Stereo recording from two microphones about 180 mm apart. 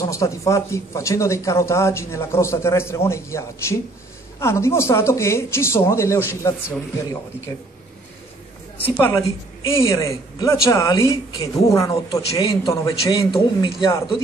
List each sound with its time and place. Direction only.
0.0 s speech: 15° left (ahead or behind)
8.7 s a man's voice: 10° left (ahead or behind); by 14.2 s 25° left (ahead or behind)